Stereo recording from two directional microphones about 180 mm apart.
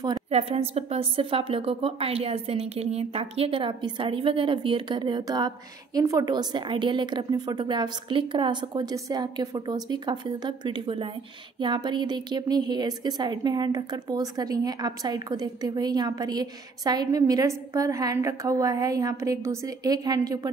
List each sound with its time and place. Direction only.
0.3 s a woman's voice: 35° right (ahead or behind)